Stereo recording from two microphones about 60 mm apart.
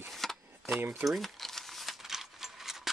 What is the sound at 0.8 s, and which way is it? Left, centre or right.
Speech, right.